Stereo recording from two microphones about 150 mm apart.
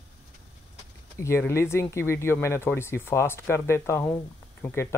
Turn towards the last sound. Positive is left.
turn(degrees=15)  # may be behind; listen again after turning